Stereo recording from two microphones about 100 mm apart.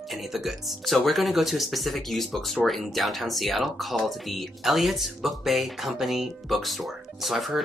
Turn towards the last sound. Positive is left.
turn(degrees=0)  # may be behind; listen again after turning